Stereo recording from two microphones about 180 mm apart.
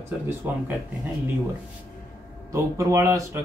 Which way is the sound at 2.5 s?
15° right (ahead or behind).